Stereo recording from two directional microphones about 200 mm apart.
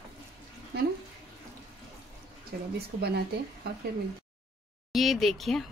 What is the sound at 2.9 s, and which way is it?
Speech, 35° right (ahead or behind).